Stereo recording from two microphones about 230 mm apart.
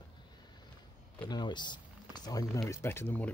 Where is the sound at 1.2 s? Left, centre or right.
Centre.